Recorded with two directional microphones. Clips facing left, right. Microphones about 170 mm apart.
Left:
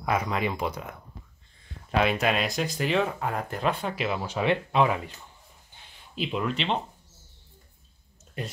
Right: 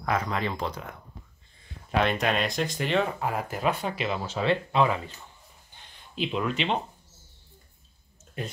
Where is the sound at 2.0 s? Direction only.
5° left (ahead or behind).